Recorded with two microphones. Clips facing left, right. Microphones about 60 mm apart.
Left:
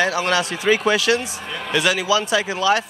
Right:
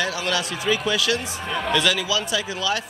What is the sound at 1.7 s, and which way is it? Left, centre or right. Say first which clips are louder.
Speech: left 3 dB; centre.